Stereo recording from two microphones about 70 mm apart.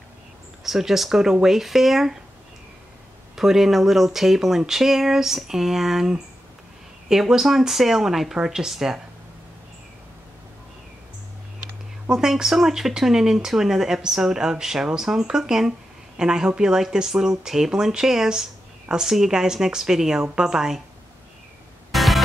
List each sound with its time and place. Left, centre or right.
0.7 s speech: centre
3.3 s speech: centre
12.1 s speech: centre
21.9 s music: centre